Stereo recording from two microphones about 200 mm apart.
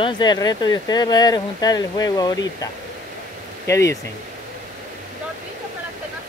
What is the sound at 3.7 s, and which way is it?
Speech, 15° left (ahead or behind).